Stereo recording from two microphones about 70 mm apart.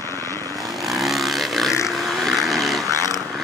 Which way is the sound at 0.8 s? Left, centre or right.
Centre.